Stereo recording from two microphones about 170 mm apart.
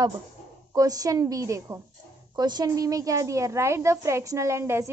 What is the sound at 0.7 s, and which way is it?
A woman's voice, 20° right (ahead or behind).